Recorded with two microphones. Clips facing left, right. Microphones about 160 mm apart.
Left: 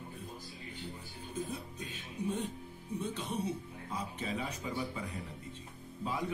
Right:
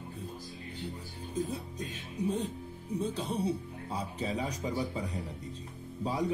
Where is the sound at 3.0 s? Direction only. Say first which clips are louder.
Right 4 dB; 35° right (ahead or behind).